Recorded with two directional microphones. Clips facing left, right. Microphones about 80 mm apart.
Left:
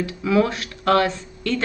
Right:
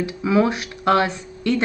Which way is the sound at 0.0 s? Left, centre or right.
Centre.